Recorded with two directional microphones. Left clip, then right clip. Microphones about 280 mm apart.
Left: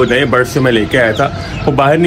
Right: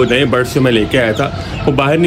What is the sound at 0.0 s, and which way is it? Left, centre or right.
Speech, centre.